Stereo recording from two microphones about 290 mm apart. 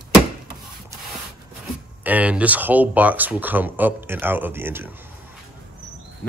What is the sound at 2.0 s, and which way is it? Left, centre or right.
Speech, centre.